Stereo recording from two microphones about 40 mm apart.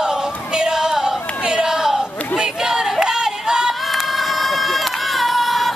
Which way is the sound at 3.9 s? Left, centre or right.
Centre.